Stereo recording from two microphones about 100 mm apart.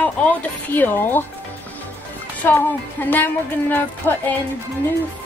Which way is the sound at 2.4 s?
20° left (ahead or behind).